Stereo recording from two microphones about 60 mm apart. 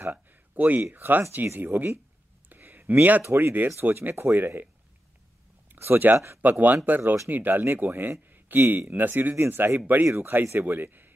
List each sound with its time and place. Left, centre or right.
0.0 s a sound: right
0.9 s speech: right
2.5 s a sound: right
3.3 s speech: right
5.7 s speech: right
6.1 s speech: right
6.4 s speech: right
9.8 s speech: right
10.0 s speech: right
10.6 s a man's voice: right